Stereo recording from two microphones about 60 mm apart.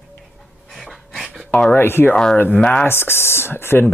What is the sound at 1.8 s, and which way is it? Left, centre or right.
Speech, left.